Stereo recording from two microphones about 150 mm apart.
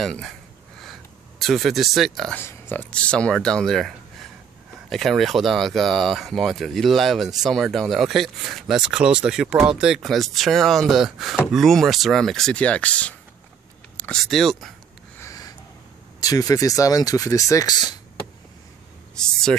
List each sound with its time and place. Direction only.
0.0 s a sound: centre (ahead or behind)
1.4 s speech: centre (ahead or behind)
2.3 s speech: 15° left (ahead or behind)
14.2 s speech: centre (ahead or behind)
15.1 s a sound: 20° left (ahead or behind)
16.2 s speech: 25° left (ahead or behind)
19.1 s speech: 5° left (ahead or behind)